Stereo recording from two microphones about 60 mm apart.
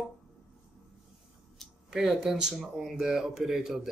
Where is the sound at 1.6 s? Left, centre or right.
Centre.